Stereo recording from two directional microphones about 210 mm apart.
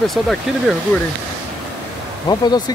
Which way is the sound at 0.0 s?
Centre (ahead or behind).